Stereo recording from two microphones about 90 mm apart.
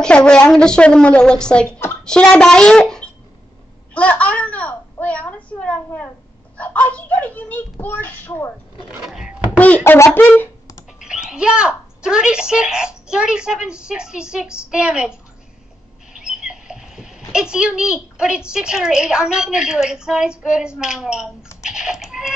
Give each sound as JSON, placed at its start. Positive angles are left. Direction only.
{"t": 0.0, "sound": "a woman's voice", "side_deg": 10}
{"t": 3.9, "sound": "a sound", "side_deg": 15}
{"t": 6.5, "sound": "speech", "side_deg": 15}
{"t": 9.0, "sound": "speech", "side_deg": -5}
{"t": 9.8, "sound": "speech", "side_deg": 30}
{"t": 11.0, "sound": "speech", "side_deg": -10}
{"t": 16.1, "sound": "rodents", "side_deg": -10}
{"t": 17.3, "sound": "a woman's voice", "side_deg": -10}